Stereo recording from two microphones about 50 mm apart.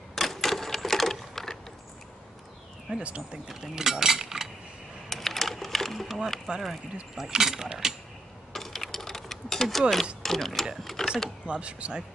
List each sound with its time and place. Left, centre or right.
0.1 s typewriter: centre
2.9 s speech: right
3.4 s mechanisms: centre
5.1 s a sound: centre
7.2 s mechanisms: centre
8.5 s a sound: centre
10.2 s speech: centre
11.4 s speech: right